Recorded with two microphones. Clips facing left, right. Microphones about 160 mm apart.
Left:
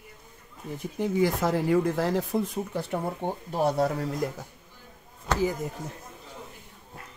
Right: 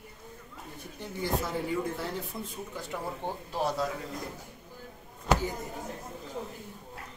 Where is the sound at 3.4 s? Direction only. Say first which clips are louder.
Left 6 dB; 55° left (ahead or behind).